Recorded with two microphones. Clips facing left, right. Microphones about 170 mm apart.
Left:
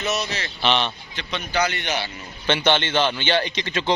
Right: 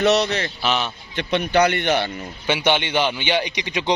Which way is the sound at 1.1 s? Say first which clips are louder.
Right 9 dB; 60° right (ahead or behind).